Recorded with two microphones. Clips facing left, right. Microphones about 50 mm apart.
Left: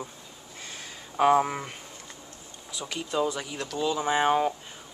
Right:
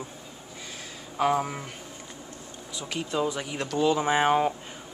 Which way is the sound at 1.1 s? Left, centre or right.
Centre.